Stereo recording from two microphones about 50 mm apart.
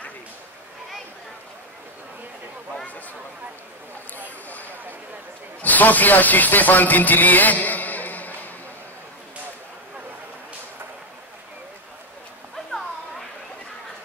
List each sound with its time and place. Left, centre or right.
5.6 s speech: left